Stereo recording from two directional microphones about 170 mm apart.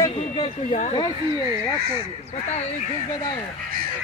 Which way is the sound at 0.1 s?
35° left (ahead or behind).